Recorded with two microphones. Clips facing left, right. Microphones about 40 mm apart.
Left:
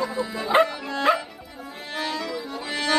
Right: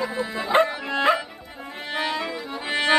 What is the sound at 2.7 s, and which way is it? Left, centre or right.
Music, right.